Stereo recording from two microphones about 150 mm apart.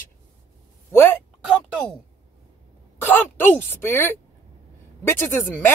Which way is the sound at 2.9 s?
10° left (ahead or behind).